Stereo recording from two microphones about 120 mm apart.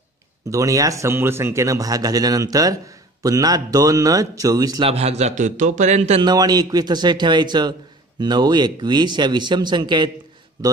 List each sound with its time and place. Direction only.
0.5 s speech: 30° right (ahead or behind)
4.8 s a man's voice: 60° right (ahead or behind)
6.2 s speech: 35° right (ahead or behind)